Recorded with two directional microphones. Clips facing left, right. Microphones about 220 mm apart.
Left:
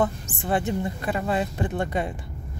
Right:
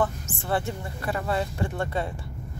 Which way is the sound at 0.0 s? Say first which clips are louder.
Left 2 dB; 15° left (ahead or behind).